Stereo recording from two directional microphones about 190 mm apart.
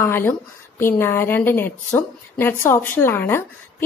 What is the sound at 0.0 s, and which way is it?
A woman's voice, 10° left (ahead or behind).